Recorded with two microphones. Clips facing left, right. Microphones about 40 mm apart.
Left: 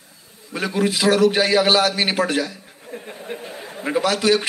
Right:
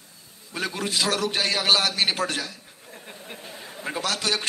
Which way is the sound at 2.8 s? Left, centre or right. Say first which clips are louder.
Left 10 dB; left.